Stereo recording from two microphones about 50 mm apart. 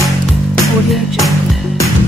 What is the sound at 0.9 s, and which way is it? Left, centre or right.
Music, centre.